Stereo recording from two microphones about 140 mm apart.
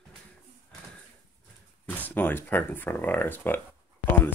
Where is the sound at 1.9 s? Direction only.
15° left (ahead or behind).